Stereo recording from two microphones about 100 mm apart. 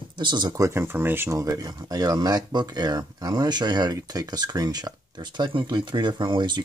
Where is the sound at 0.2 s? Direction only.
50° right (ahead or behind); by 1.4 s 25° right (ahead or behind).